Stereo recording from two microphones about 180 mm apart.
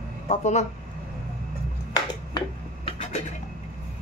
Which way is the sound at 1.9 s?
30° left (ahead or behind).